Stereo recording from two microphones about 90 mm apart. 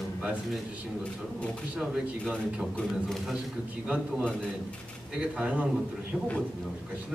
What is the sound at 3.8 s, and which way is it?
Speech, 10° right (ahead or behind).